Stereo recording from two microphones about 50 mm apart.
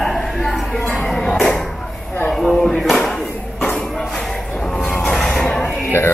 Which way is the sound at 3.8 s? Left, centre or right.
Centre.